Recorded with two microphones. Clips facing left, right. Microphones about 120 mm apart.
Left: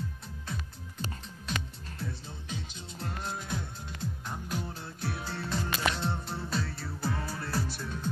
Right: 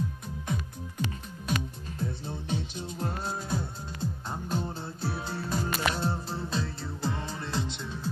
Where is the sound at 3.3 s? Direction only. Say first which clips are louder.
Right 4 dB; 25° right (ahead or behind).